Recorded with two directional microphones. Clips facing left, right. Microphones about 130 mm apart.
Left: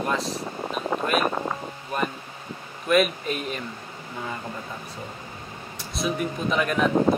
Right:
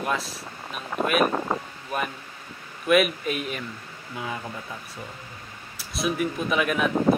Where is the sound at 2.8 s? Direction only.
5° right (ahead or behind).